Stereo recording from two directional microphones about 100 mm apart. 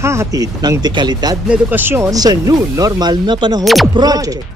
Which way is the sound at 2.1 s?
40° right (ahead or behind).